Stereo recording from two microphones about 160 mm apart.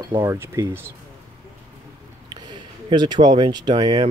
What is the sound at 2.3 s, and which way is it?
Speech, 25° right (ahead or behind).